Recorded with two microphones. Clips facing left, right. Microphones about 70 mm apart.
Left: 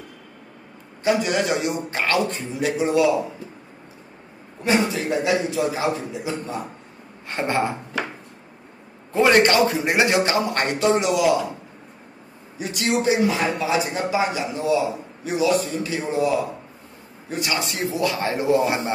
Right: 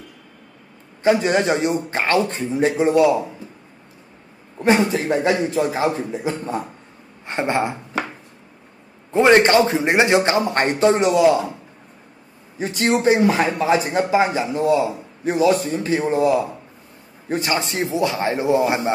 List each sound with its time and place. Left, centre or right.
1.0 s a man's voice: right
4.9 s a man's voice: right
7.2 s speech: right
9.1 s a man's voice: right
12.5 s a man's voice: right